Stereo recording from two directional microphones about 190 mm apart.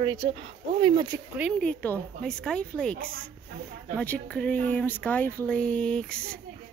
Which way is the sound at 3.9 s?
5° left (ahead or behind).